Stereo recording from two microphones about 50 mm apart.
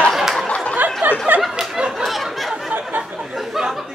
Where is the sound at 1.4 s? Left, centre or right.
Centre.